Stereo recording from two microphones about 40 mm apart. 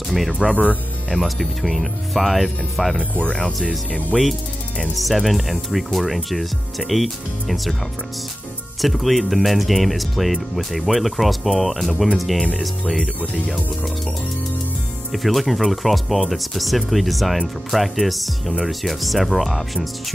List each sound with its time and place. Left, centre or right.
0.1 s speech: centre
0.5 s speech: left
1.1 s speech: centre
4.2 s speech: centre
8.8 s speech: centre
15.2 s speech: centre